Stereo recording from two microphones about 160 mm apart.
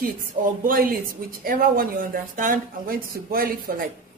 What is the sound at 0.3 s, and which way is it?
Speech, 60° right (ahead or behind).